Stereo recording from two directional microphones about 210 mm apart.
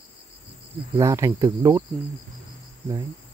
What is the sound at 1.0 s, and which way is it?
Speech, 15° right (ahead or behind).